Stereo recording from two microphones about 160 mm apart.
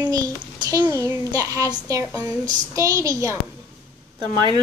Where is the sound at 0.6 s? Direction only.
25° right (ahead or behind).